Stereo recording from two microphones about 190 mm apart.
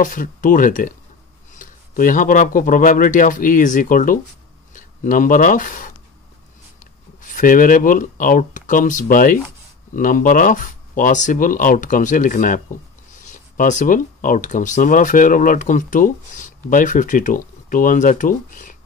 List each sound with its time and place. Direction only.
0.0 s speech: 45° left (ahead or behind)
7.2 s speech: 45° left (ahead or behind)